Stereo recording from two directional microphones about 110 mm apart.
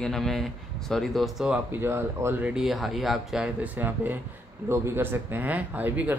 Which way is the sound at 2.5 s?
Centre (ahead or behind).